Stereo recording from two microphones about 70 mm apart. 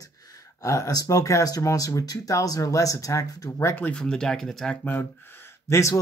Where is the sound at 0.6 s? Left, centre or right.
Left.